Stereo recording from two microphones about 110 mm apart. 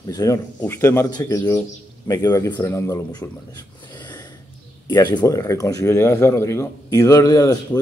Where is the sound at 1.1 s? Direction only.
35° left (ahead or behind).